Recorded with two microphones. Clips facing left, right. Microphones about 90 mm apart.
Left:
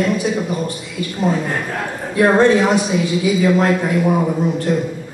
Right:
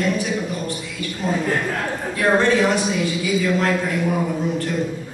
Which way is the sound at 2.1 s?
20° left (ahead or behind).